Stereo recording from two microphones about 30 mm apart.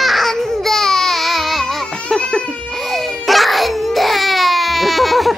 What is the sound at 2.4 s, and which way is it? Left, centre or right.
Laughter, left.